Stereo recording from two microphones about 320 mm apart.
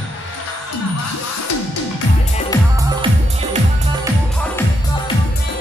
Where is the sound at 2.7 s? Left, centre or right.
Centre.